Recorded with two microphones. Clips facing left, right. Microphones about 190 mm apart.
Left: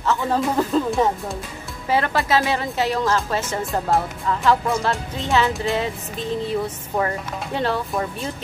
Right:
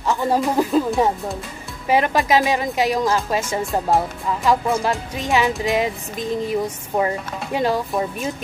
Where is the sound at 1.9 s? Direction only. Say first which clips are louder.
Right 3 dB; 15° right (ahead or behind).